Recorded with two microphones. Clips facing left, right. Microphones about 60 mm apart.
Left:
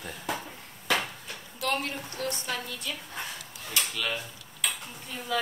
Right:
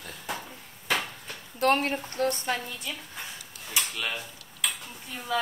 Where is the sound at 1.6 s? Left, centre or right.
Right.